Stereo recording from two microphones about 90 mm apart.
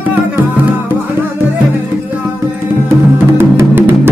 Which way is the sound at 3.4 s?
25° right (ahead or behind).